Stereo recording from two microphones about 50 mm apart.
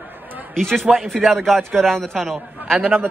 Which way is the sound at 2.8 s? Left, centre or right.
Right.